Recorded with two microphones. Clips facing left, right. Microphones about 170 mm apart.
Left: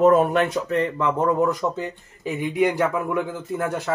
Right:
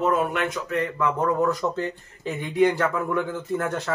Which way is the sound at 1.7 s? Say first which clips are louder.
Right 1 dB; 10° left (ahead or behind).